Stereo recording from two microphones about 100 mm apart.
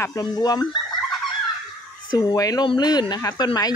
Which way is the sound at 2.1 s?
35° left (ahead or behind).